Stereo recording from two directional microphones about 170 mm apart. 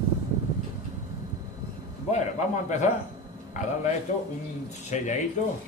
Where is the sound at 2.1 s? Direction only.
40° left (ahead or behind).